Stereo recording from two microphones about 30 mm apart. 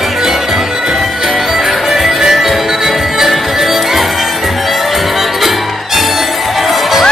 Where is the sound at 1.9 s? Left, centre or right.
Centre.